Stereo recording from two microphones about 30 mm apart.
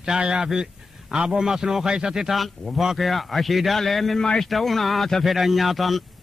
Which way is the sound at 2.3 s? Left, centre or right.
Centre.